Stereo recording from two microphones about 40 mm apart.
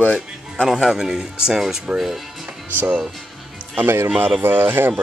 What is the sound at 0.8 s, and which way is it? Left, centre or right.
Music, centre.